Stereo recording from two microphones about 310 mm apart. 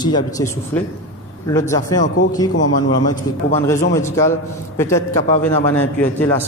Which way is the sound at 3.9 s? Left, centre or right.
Centre.